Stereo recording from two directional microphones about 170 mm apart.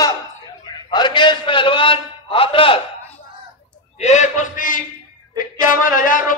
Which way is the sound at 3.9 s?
45° left (ahead or behind).